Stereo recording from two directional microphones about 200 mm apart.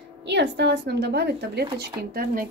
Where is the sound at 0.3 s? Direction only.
60° right (ahead or behind).